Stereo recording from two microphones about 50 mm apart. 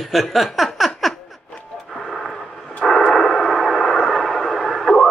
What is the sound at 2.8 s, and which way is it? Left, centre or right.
Radio, centre.